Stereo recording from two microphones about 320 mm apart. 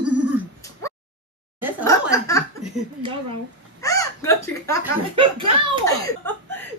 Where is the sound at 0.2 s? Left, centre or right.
Centre.